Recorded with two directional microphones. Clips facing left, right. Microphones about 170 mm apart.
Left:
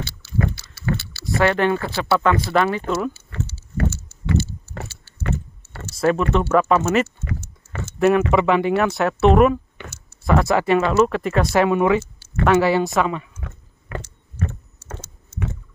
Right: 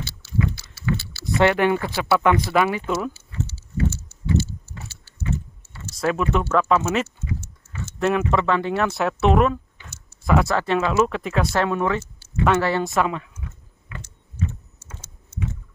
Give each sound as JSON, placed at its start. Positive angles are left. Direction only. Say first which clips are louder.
{"t": 0.0, "sound": "rowboat", "louder": "left 1 dB", "side_deg": 65}
{"t": 0.9, "sound": "vehicle", "louder": "left 1 dB", "side_deg": 60}
{"t": 1.4, "sound": "speech", "louder": "even", "side_deg": -15}
{"t": 3.1, "sound": "a sound", "louder": "left 1 dB", "side_deg": 55}
{"t": 5.9, "sound": "speech", "louder": "left 3 dB", "side_deg": 0}
{"t": 7.2, "sound": "a sound", "louder": "left 1 dB", "side_deg": 75}
{"t": 8.3, "sound": "speech", "louder": "left 4 dB", "side_deg": 15}
{"t": 9.8, "sound": "a sound", "louder": "left 9 dB", "side_deg": 70}
{"t": 10.2, "sound": "speech", "louder": "left 1 dB", "side_deg": -5}
{"t": 10.5, "sound": "speech", "louder": "left 4 dB", "side_deg": 10}
{"t": 12.0, "sound": "a sound", "louder": "left 1 dB", "side_deg": 70}
{"t": 12.4, "sound": "speech", "louder": "left 4 dB", "side_deg": 10}
{"t": 13.4, "sound": "biting", "louder": "left 2 dB", "side_deg": 70}